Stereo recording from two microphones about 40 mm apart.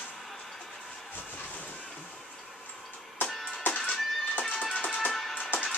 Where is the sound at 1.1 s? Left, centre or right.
Left.